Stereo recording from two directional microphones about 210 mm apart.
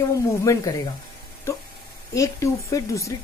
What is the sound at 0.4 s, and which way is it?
Speech, 15° left (ahead or behind).